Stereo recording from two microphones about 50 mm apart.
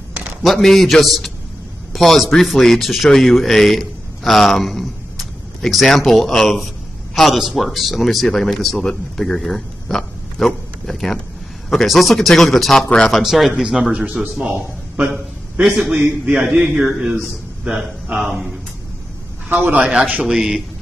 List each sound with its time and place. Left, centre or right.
0.4 s a man's voice: centre
12.8 s speech: centre
13.1 s speech: centre
15.8 s speech: centre
17.6 s a man's voice: centre
19.7 s a man's voice: right
20.2 s speech: centre